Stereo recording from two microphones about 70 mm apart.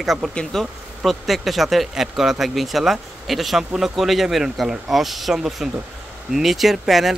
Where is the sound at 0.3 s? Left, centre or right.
Centre.